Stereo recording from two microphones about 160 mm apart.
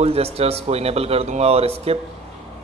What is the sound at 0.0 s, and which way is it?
A man's voice, 40° right (ahead or behind).